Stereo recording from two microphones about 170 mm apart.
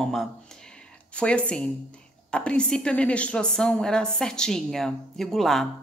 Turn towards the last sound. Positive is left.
turn(degrees=0)  # may be behind; listen again after turning